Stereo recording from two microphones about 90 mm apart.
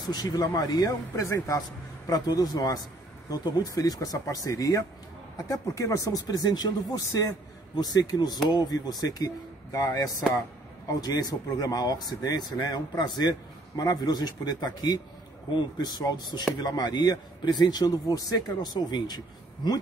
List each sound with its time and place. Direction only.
0.0 s speech: 50° left (ahead or behind)
7.7 s speech: 50° left (ahead or behind)